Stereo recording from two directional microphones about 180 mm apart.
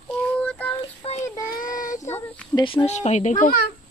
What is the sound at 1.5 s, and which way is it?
Synthetic singing, 50° left (ahead or behind).